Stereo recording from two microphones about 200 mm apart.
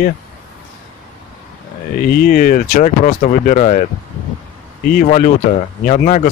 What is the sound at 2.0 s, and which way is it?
Speech, 45° left (ahead or behind).